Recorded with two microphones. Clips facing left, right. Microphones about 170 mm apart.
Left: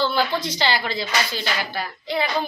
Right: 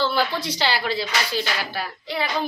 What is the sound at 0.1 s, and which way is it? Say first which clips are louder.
Speech: left 1 dB; 5° right (ahead or behind).